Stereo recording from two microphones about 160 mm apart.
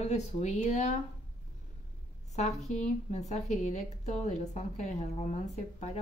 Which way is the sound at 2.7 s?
45° left (ahead or behind).